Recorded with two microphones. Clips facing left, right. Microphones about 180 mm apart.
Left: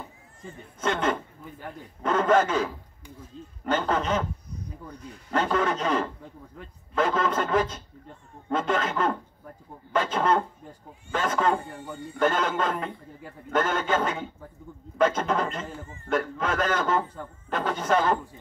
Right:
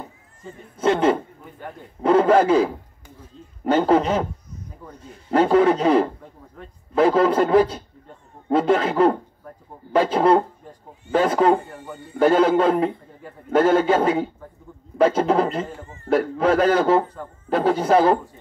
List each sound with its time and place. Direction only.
0.7 s a man's voice: 30° right (ahead or behind)
5.3 s a man's voice: 35° right (ahead or behind)